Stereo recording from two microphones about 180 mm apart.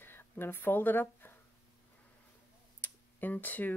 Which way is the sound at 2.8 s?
10° left (ahead or behind).